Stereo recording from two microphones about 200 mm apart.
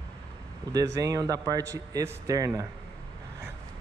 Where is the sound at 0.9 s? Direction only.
15° right (ahead or behind).